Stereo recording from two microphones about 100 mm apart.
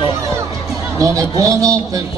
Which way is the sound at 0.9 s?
35° right (ahead or behind).